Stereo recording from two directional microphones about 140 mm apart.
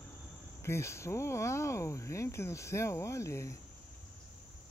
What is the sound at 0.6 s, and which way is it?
Speech, 20° left (ahead or behind).